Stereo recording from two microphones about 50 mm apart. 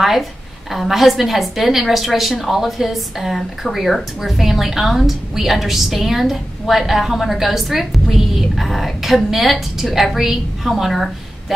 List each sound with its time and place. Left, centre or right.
0.7 s a woman's voice: centre